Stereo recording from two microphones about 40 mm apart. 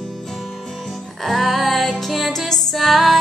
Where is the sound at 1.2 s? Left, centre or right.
Centre.